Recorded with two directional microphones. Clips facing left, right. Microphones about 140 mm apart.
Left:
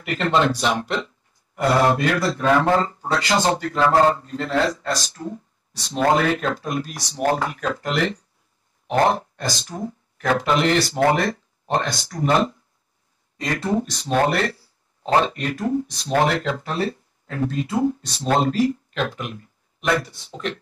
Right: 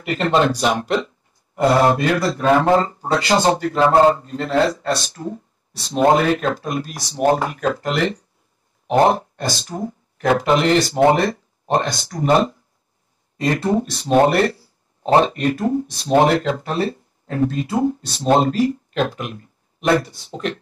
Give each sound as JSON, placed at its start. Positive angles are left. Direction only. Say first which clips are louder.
{"t": 0.0, "sound": "speech", "louder": "right 3 dB", "side_deg": -25}
{"t": 0.3, "sound": "speech", "louder": "right 3 dB", "side_deg": -15}
{"t": 1.5, "sound": "speech", "louder": "right 3 dB", "side_deg": -25}
{"t": 8.8, "sound": "speech", "louder": "right 4 dB", "side_deg": -20}
{"t": 13.4, "sound": "speech", "louder": "right 4 dB", "side_deg": -25}